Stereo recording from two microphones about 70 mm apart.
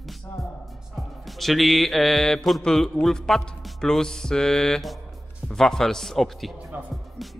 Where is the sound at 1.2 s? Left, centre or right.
Centre.